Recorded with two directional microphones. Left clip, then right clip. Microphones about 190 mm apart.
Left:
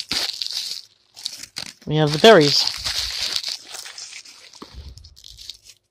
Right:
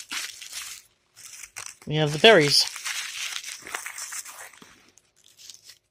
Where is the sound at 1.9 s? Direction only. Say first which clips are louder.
Left 4 dB; 25° left (ahead or behind).